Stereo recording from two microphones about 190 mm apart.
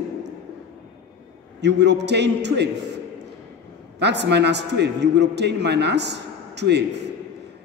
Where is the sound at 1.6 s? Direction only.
65° right (ahead or behind).